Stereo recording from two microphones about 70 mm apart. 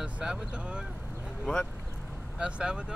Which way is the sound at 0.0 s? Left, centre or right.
Centre.